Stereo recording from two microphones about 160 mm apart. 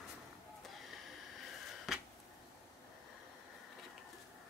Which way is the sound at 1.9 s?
Centre (ahead or behind).